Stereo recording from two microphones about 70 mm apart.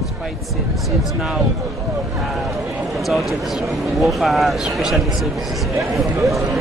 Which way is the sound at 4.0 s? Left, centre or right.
Centre.